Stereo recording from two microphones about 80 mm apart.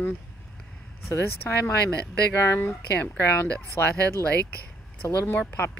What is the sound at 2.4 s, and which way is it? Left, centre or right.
Speech, left.